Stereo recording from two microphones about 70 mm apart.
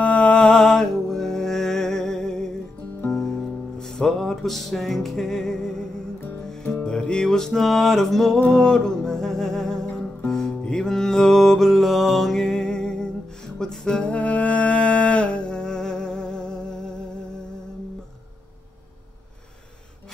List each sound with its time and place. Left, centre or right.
0.0 s mantra: centre
3.7 s music: centre